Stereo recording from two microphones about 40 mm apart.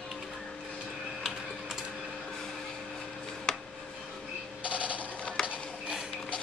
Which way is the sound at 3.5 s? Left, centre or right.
Centre.